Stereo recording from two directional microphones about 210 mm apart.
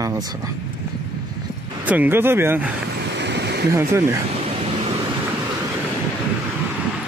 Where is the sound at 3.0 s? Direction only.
55° right (ahead or behind).